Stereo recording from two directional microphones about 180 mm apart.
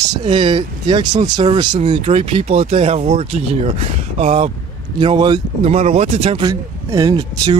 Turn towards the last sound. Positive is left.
turn(degrees=-20)  # may be behind; listen again after turning